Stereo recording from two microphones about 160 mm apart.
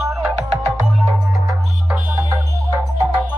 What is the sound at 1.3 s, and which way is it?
Music, 20° right (ahead or behind).